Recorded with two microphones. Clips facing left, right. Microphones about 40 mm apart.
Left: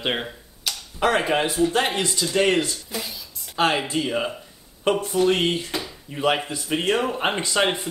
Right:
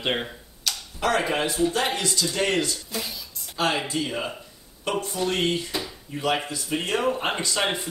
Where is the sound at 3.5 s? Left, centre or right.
Left.